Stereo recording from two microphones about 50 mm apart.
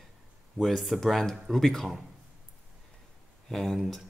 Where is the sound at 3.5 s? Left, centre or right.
Centre.